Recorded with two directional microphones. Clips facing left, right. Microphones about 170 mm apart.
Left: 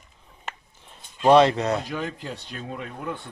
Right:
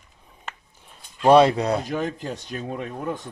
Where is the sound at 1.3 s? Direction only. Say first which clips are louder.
Right 1 dB; 10° right (ahead or behind).